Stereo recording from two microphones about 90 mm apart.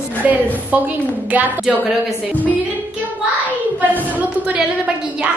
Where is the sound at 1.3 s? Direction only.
20° right (ahead or behind).